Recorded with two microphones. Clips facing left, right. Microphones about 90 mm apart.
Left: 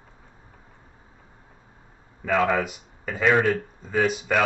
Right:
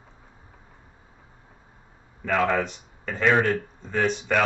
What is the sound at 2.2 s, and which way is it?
Speech, 5° left (ahead or behind).